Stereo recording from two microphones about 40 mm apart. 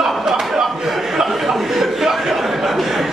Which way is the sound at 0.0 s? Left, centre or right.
Centre.